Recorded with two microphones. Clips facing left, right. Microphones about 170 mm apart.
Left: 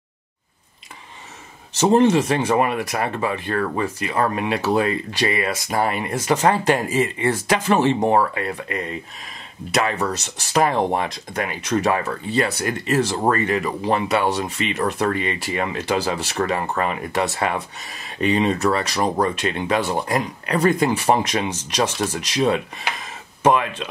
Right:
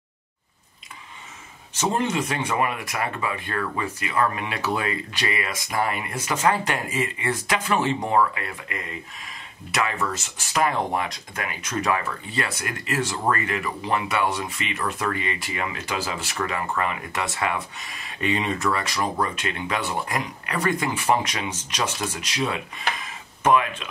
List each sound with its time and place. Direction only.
1.8 s speech: 30° left (ahead or behind)
23.4 s speech: 35° left (ahead or behind)